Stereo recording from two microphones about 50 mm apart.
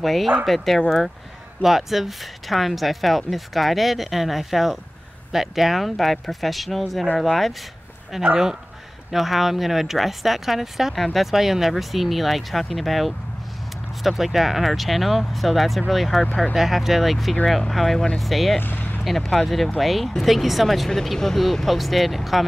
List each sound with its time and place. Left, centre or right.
0.0 s speech: centre
18.6 s vehicle: left
19.0 s speech: centre